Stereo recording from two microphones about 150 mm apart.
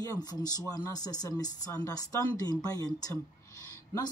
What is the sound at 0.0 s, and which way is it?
Speech, 25° left (ahead or behind).